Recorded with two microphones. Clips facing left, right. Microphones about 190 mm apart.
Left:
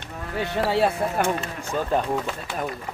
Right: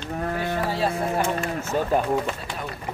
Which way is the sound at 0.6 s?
65° left (ahead or behind).